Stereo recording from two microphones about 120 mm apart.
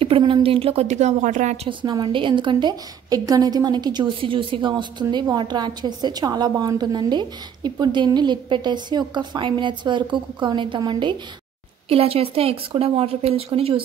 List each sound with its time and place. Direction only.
0.2 s a woman's voice: 50° right (ahead or behind); by 1.7 s 85° right
1.7 s a woman's voice: 40° right (ahead or behind)
11.9 s a woman's voice: 55° right (ahead or behind)